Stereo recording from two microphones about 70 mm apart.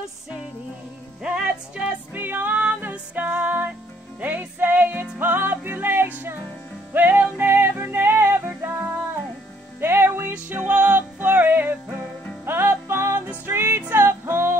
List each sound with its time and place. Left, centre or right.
2.1 s music: right